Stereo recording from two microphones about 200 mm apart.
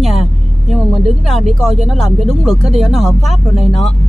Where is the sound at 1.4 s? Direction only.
Centre (ahead or behind).